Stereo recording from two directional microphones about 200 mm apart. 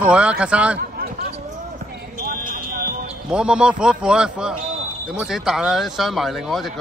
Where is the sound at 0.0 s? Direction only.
5° right (ahead or behind).